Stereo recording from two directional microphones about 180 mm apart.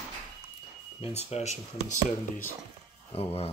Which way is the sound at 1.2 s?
35° left (ahead or behind).